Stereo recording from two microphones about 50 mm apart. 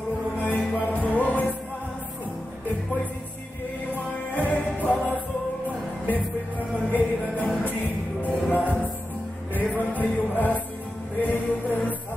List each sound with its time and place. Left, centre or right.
0.4 s music: left
4.4 s music: left
9.9 s music: left